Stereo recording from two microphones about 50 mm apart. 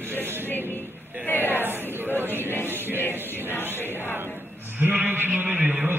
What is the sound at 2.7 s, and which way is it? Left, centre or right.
Music, right.